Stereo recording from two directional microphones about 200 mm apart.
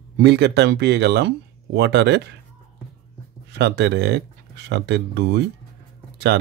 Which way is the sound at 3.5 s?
55° right (ahead or behind).